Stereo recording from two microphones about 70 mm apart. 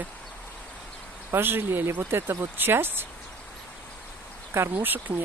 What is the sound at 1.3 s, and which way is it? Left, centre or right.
Speech, right.